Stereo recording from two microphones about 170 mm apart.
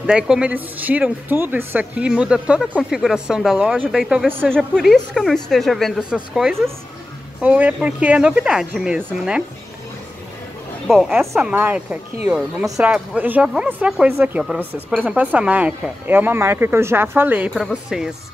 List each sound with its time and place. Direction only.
0.0 s a woman's voice: 5° right (ahead or behind)
10.9 s a woman's voice: centre (ahead or behind)